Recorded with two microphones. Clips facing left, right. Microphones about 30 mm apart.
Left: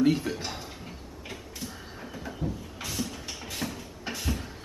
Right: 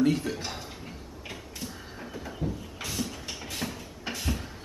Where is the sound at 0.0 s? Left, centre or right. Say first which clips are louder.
Left 1 dB; centre.